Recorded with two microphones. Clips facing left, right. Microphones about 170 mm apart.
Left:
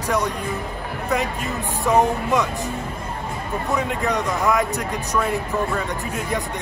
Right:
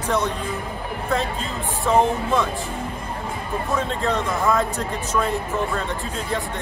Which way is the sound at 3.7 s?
15° left (ahead or behind).